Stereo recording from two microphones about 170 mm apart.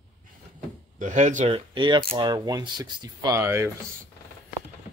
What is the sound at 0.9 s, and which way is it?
Speech, 45° right (ahead or behind).